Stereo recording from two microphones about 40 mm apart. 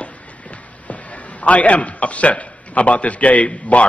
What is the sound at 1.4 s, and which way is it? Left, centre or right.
A man's voice, left.